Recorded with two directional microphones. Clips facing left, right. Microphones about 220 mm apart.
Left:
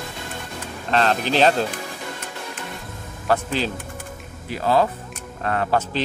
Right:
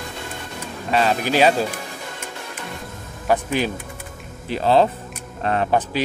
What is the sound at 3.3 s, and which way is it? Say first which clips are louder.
Speech: right 2 dB; 15° right (ahead or behind).